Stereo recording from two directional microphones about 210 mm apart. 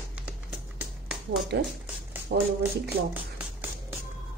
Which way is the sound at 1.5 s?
55° right (ahead or behind).